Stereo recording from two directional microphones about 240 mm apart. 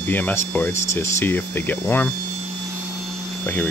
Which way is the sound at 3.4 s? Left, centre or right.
Centre.